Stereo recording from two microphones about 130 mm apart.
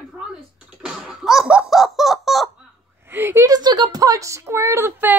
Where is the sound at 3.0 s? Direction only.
15° right (ahead or behind).